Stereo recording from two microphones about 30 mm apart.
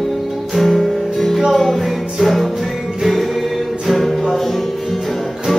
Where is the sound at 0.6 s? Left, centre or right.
Centre.